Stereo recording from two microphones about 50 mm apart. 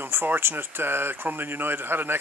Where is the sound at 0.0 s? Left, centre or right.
Right.